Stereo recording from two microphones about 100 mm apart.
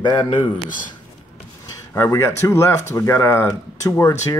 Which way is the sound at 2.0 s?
30° left (ahead or behind).